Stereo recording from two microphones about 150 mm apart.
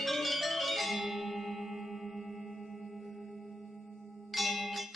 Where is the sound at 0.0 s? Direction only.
Centre (ahead or behind).